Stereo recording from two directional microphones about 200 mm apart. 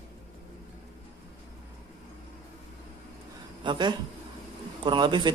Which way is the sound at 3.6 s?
25° right (ahead or behind).